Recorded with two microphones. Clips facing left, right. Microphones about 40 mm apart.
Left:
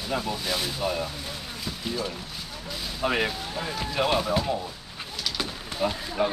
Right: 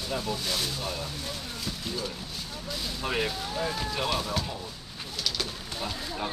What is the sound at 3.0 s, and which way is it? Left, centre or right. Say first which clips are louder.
Speech: left 5 dB; centre.